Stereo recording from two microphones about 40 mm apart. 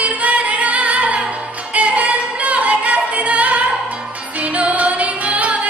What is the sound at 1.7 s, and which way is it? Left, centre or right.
Music, right.